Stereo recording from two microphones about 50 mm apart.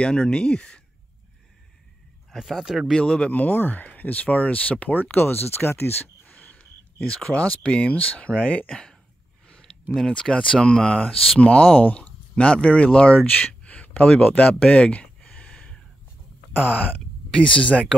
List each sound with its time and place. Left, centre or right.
0.0 s speech: centre
2.3 s speech: centre
2.9 s speech: centre
5.1 s speech: left
7.3 s speech: left
10.3 s speech: centre
11.4 s speech: left
14.4 s speech: centre
14.7 s speech: left
15.2 s gasp: left
16.5 s speech: left
17.3 s speech: left